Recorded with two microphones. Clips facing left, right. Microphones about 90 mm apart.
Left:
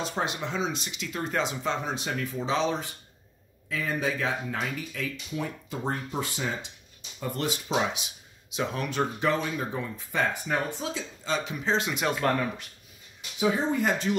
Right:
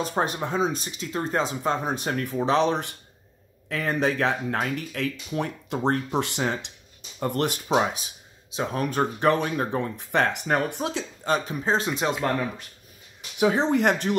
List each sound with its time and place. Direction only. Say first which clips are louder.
0.0 s speech: right 4 dB; 45° right (ahead or behind); by 6.7 s 70° right (ahead or behind)
7.2 s speech: right 5 dB; 60° right (ahead or behind)
7.6 s speech: right 4 dB; 40° right (ahead or behind)
9.3 s speech: right 5 dB; 60° right (ahead or behind); by 12.1 s 35° right (ahead or behind)
12.1 s speech: left 1 dB; 20° right (ahead or behind)
13.4 s speech: right 4 dB; 70° right (ahead or behind)